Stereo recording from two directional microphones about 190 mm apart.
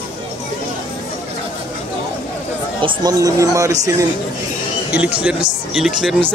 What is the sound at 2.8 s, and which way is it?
Speech, 20° right (ahead or behind).